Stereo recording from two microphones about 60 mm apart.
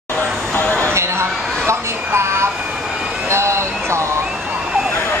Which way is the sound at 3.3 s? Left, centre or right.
Right.